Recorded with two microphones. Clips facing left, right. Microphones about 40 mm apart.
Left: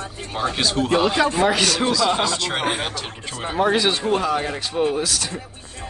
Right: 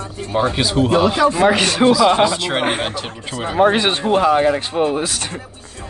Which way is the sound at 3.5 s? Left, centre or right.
Right.